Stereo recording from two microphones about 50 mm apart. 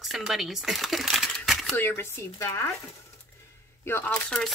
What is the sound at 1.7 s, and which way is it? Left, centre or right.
Speech, left.